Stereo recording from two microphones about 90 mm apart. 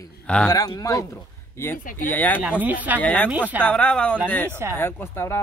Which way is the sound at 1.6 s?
20° left (ahead or behind).